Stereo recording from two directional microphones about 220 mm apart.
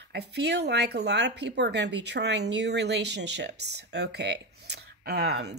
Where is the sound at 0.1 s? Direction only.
50° right (ahead or behind).